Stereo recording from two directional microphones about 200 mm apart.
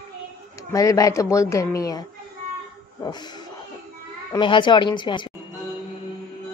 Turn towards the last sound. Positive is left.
turn(degrees=25)  # may be behind; listen again after turning